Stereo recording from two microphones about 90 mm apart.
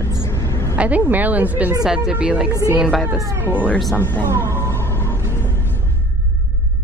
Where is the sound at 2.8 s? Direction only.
Centre (ahead or behind).